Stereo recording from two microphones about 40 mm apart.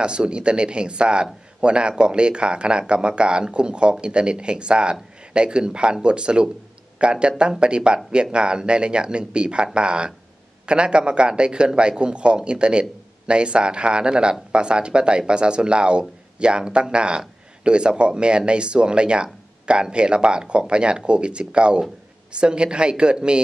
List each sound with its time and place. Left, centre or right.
0.0 s speech: right